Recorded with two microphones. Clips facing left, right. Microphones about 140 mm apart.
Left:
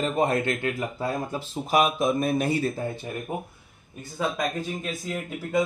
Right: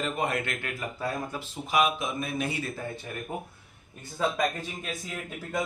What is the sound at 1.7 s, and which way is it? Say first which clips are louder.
Speech: left 4 dB; 40° left (ahead or behind).